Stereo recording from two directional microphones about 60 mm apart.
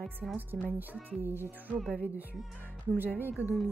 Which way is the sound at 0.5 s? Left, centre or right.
Right.